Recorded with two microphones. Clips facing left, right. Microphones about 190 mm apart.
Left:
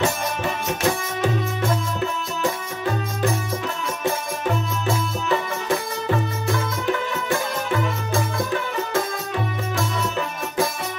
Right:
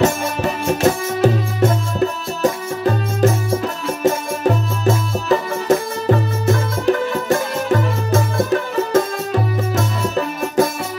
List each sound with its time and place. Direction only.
0.0 s music: 40° right (ahead or behind)